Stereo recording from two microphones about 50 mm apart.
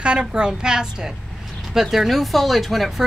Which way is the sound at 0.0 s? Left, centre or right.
Centre.